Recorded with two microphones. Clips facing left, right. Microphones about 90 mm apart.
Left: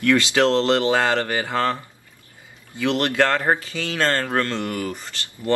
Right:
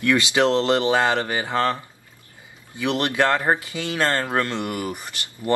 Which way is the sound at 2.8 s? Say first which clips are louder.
Left 1 dB; 15° right (ahead or behind).